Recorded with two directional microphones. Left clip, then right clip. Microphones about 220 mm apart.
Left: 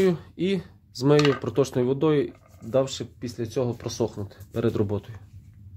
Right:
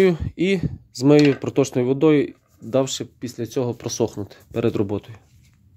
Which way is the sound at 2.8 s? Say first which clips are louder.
Right 4 dB; 45° right (ahead or behind).